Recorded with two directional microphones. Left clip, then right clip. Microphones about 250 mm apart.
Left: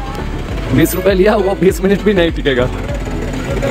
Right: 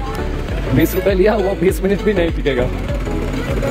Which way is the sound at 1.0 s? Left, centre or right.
Centre.